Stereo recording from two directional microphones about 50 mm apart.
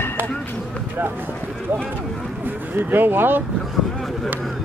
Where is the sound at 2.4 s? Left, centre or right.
Right.